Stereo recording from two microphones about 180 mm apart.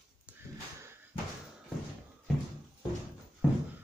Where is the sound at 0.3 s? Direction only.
10° right (ahead or behind).